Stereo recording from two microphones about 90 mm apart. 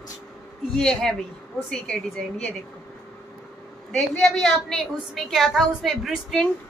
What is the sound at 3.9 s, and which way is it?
A woman's voice, 5° left (ahead or behind).